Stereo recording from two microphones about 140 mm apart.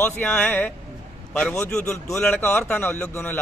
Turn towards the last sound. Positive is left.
turn(degrees=15)  # may be behind; listen again after turning